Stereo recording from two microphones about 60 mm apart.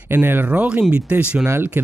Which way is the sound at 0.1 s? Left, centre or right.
Right.